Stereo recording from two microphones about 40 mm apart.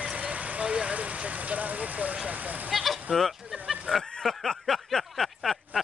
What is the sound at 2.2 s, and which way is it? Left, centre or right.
Speech, right.